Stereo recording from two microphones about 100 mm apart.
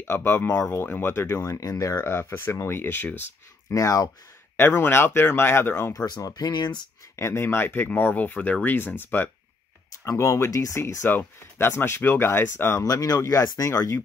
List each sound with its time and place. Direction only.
0.0 s speech: 25° left (ahead or behind)
2.0 s speech: 25° left (ahead or behind)
3.7 s speech: 35° left (ahead or behind)
4.6 s speech: 20° left (ahead or behind)
5.9 s speech: 40° left (ahead or behind)
7.2 s speech: 25° left (ahead or behind)
12.8 s speech: 40° left (ahead or behind)